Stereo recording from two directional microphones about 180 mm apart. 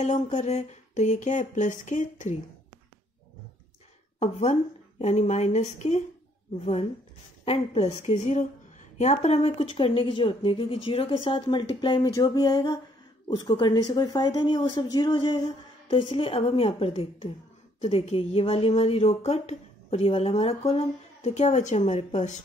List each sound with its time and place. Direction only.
0.0 s a woman's voice: 40° left (ahead or behind)
4.2 s a woman's voice: 35° left (ahead or behind)